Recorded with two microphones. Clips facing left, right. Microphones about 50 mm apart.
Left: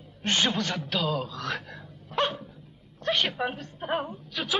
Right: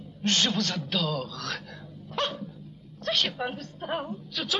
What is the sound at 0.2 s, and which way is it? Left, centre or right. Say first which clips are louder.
A woman's voice: even; centre.